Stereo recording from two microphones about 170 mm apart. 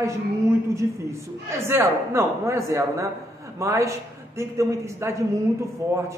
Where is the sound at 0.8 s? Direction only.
15° right (ahead or behind).